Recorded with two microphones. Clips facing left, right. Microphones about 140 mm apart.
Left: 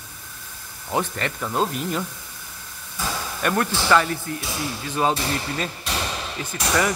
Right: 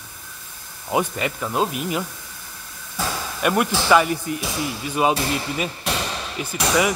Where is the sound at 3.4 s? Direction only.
10° right (ahead or behind).